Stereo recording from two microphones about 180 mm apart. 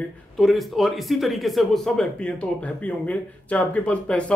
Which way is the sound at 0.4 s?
Centre (ahead or behind).